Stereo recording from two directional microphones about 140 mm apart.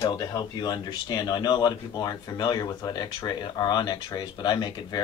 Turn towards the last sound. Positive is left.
turn(degrees=30)  # may be behind; listen again after turning